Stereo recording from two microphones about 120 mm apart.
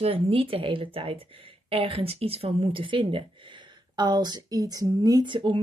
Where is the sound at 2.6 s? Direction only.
45° right (ahead or behind).